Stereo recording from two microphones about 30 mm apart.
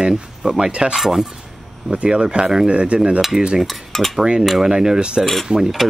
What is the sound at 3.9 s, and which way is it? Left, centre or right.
Cutlery, centre.